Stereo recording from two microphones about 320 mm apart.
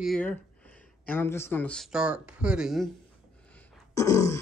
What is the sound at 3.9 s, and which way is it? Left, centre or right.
Speech, centre.